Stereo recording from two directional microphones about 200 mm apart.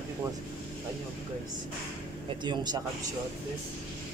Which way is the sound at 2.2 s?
20° right (ahead or behind).